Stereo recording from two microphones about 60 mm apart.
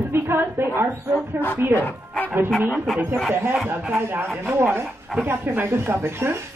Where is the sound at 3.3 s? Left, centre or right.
Right.